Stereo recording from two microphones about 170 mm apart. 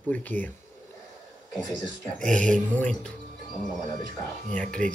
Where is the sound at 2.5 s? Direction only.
5° left (ahead or behind).